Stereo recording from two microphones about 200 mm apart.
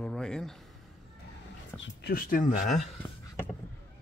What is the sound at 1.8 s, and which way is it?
Speech, 50° left (ahead or behind).